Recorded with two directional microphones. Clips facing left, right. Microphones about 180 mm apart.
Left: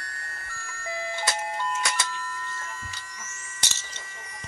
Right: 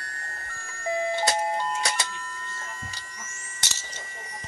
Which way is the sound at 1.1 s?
30° right (ahead or behind).